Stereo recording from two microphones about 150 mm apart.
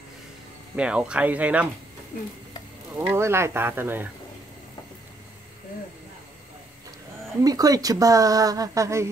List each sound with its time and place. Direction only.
0.7 s speech: 5° right (ahead or behind)
3.0 s speech: 15° right (ahead or behind)
7.4 s speech: 25° right (ahead or behind)